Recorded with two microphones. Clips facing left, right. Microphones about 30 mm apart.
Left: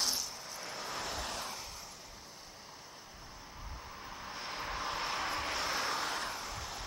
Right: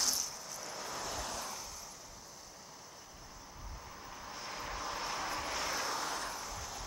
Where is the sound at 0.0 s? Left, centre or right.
Left.